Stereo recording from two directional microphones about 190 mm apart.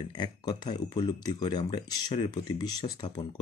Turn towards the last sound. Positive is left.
turn(degrees=20)  # may be behind; listen again after turning